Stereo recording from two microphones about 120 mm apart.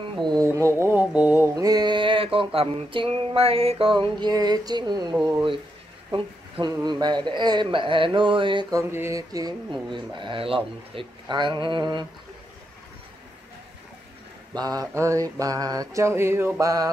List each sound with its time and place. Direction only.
0.3 s a sound: 25° right (ahead or behind)
1.5 s a sound: 30° right (ahead or behind)
6.1 s a man's voice: 40° right (ahead or behind)
8.7 s mantra: 25° right (ahead or behind)
9.9 s a man's voice: 40° right (ahead or behind)
14.5 s mantra: 30° right (ahead or behind)